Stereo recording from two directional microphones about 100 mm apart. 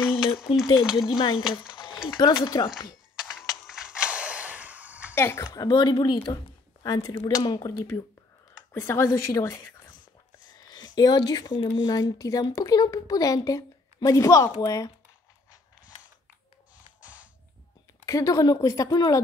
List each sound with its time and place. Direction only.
0.1 s a sound: 70° left (ahead or behind)
0.6 s speech: 5° right (ahead or behind)
1.0 s speech: 55° left (ahead or behind)
1.7 s a sound: 55° left (ahead or behind)
2.1 s a woman's voice: 50° left (ahead or behind)
3.3 s mechanisms: 5° right (ahead or behind)
5.1 s speech: 25° left (ahead or behind)
5.4 s a woman's voice: 35° left (ahead or behind)
8.7 s a woman's voice: 25° left (ahead or behind)
10.7 s speech: 45° left (ahead or behind)
17.0 s a sound: 15° right (ahead or behind)
18.0 s speech: 35° left (ahead or behind)